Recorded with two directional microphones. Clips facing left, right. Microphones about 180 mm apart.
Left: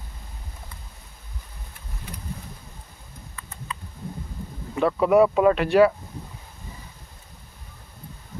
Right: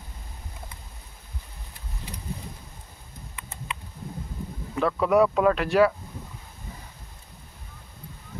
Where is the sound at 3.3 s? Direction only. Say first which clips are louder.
Even; 20° right (ahead or behind).